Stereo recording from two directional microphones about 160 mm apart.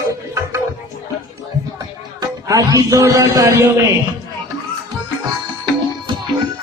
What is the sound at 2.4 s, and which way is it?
A man's voice, 20° right (ahead or behind).